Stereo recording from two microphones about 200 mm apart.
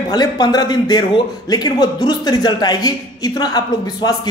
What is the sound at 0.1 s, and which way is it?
A man's voice, 20° left (ahead or behind).